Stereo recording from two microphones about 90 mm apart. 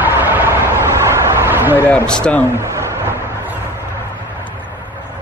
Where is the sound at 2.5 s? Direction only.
30° right (ahead or behind).